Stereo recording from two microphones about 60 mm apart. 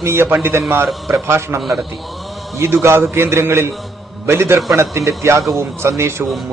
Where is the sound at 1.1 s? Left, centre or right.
Right.